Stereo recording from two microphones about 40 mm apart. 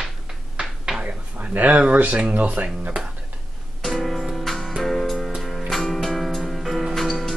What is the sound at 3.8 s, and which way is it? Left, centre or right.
Music, centre.